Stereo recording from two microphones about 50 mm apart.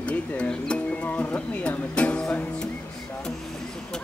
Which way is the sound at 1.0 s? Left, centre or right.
Left.